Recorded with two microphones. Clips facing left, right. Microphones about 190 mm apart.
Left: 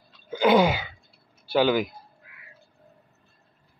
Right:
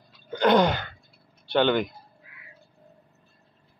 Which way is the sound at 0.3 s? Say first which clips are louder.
Left 1 dB; 5° left (ahead or behind).